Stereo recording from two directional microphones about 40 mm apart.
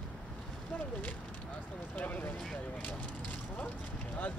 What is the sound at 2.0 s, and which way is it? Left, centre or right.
Speech, left.